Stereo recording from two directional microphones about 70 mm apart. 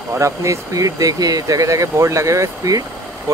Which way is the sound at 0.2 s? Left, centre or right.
Right.